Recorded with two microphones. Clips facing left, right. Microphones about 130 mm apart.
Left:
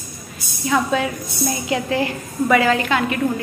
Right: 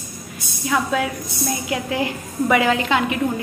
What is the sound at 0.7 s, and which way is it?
A woman's voice, 5° right (ahead or behind).